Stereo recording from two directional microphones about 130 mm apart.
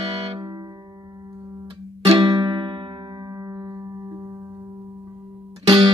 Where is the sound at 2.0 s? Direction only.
40° right (ahead or behind).